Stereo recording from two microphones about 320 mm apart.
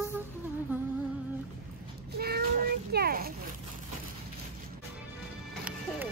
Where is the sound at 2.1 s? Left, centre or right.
Right.